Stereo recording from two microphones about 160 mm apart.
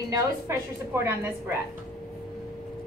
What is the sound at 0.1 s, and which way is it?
A woman's voice, 20° right (ahead or behind).